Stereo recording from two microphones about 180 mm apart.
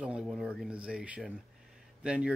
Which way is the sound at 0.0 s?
5° right (ahead or behind).